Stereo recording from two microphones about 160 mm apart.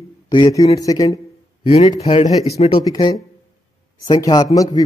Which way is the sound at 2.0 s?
40° left (ahead or behind).